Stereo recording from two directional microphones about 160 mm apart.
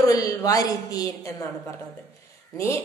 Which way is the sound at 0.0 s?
20° left (ahead or behind).